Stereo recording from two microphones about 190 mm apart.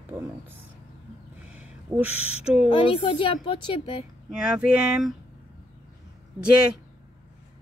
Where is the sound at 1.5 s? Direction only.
10° right (ahead or behind).